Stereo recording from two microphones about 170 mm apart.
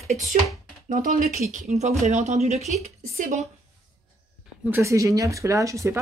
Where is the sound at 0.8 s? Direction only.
50° right (ahead or behind).